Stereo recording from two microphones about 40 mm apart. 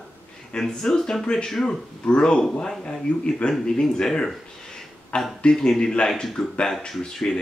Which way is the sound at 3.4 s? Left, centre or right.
Left.